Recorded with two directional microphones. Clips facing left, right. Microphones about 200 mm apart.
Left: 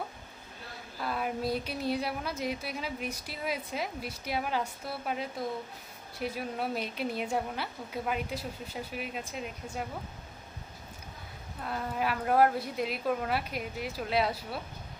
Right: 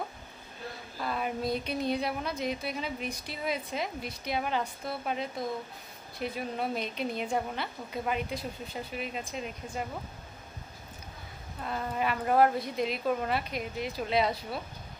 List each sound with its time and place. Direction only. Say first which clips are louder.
1.0 s speech: even; centre (ahead or behind)
11.6 s speech: right 1 dB; 5° left (ahead or behind)